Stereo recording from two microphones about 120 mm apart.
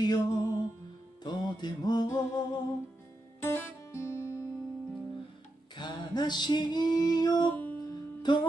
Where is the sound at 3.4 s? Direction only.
25° left (ahead or behind).